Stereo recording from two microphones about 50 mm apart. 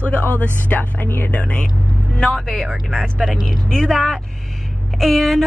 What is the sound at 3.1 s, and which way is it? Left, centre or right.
Speech, centre.